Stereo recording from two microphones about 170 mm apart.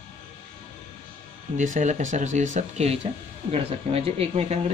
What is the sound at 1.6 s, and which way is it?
Speech, 45° right (ahead or behind).